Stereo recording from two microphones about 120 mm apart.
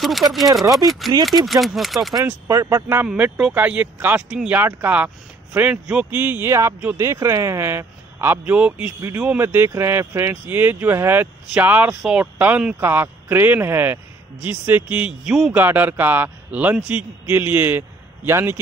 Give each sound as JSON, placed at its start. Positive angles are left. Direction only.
{"t": 0.0, "sound": "speech", "side_deg": 0}
{"t": 2.4, "sound": "speech", "side_deg": -30}
{"t": 3.3, "sound": "speech", "side_deg": -10}